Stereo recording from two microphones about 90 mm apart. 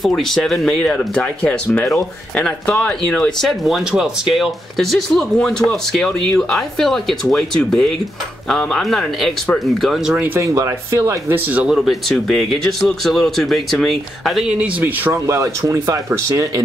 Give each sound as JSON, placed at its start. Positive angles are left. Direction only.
{"t": 0.0, "sound": "speech", "side_deg": 5}
{"t": 10.1, "sound": "speech", "side_deg": -20}
{"t": 10.4, "sound": "speech", "side_deg": -35}
{"t": 11.7, "sound": "speech", "side_deg": 0}
{"t": 14.6, "sound": "speech", "side_deg": -20}
{"t": 15.2, "sound": "speech", "side_deg": -35}